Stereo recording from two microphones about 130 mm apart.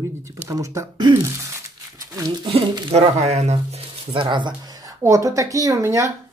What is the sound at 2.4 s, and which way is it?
Speech, 40° right (ahead or behind).